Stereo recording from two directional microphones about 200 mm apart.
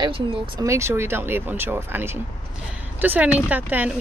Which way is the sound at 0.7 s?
15° right (ahead or behind).